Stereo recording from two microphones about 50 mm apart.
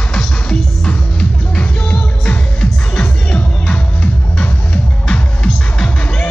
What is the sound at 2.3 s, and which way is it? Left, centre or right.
Music, left.